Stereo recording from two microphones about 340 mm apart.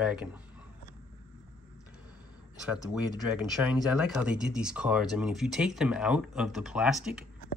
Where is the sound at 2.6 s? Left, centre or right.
Centre.